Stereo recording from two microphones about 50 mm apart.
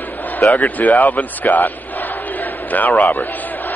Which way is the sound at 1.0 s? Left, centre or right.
Left.